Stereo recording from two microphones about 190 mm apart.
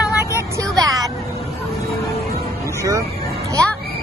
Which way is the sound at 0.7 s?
20° right (ahead or behind).